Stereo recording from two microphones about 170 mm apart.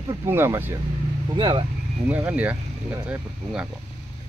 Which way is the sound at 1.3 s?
25° right (ahead or behind).